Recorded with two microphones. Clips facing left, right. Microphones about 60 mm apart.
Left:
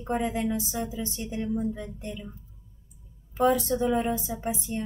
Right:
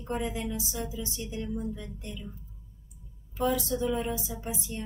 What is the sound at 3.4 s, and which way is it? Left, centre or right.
A woman's voice, left.